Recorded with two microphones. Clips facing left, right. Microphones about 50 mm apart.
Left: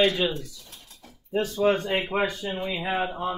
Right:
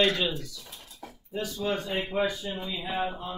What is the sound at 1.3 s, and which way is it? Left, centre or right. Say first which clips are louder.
Speech: left 7 dB; left.